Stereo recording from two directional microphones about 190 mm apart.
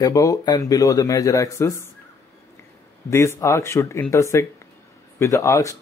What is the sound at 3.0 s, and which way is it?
Speech, 15° left (ahead or behind).